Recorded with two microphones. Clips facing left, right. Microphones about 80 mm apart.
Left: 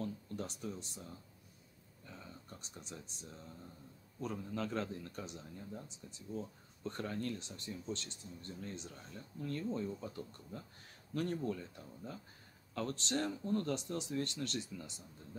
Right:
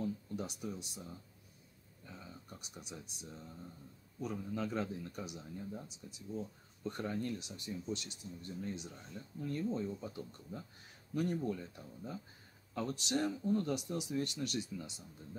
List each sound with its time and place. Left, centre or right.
0.0 s speech: centre
2.0 s a man's voice: centre